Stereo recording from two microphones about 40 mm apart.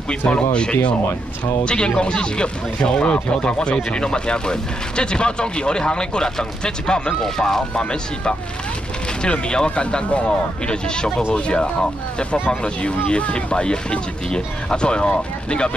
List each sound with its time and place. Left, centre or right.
0.3 s speech: left
9.2 s speech: left